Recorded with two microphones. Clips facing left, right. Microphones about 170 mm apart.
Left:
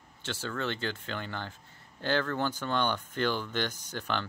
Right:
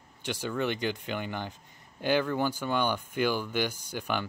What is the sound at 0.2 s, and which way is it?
Speech, 15° right (ahead or behind).